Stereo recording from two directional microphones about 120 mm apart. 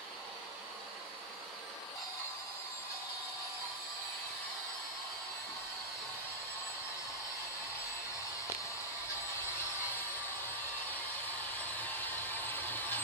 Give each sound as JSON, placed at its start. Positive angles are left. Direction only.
{"t": 11.8, "sound": "hair dryer", "side_deg": 15}